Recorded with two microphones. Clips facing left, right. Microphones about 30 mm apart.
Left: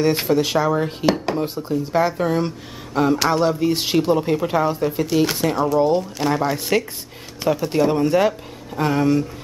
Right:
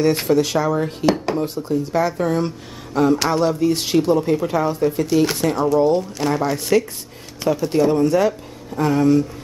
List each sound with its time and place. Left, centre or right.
0.0 s speech: centre
7.9 s speech: centre